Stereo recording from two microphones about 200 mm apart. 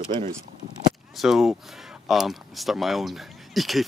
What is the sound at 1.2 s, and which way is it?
Speech, centre (ahead or behind).